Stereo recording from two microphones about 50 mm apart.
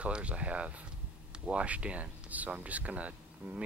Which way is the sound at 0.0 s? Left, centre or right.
Right.